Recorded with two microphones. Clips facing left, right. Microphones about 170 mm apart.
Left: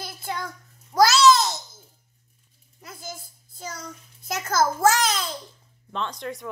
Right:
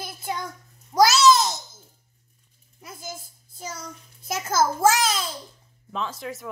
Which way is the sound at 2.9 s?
15° right (ahead or behind).